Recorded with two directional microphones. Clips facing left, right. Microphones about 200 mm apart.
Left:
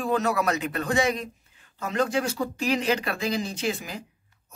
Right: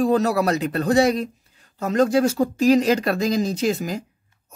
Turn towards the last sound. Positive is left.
turn(degrees=-40)  # may be behind; listen again after turning